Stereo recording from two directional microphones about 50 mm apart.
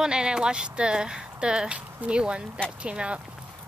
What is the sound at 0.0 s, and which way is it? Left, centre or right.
Speech, centre.